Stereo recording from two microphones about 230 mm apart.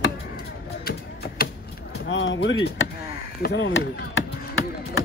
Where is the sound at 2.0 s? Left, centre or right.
Left.